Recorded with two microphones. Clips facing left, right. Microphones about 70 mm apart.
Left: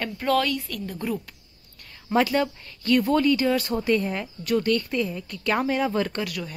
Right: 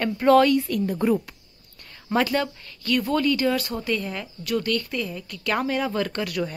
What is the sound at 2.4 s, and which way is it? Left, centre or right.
Speech, left.